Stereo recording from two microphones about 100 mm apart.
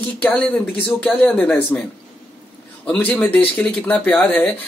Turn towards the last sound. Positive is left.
turn(degrees=15)  # may be behind; listen again after turning